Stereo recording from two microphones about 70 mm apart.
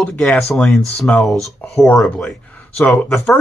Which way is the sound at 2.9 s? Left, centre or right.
Centre.